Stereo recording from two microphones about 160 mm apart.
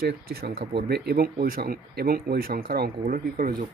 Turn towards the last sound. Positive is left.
turn(degrees=-65)  # may be behind; listen again after turning